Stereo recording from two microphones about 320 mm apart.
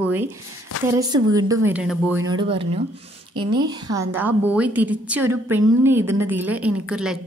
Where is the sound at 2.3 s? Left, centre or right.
Centre.